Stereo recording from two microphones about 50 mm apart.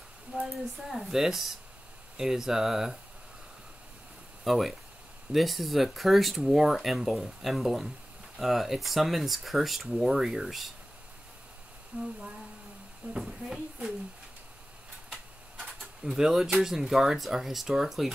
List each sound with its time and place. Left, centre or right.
0.3 s speech: right
0.8 s speech: centre
4.5 s speech: centre
11.9 s speech: right
13.1 s speech: centre
15.0 s a sound: centre
16.6 s speech: centre